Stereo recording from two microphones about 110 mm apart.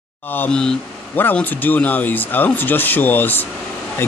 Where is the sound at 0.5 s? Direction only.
5° left (ahead or behind).